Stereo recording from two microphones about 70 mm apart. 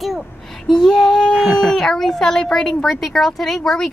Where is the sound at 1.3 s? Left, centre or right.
Centre.